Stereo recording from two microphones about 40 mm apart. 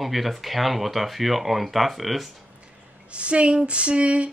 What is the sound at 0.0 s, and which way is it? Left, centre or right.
Speech, centre.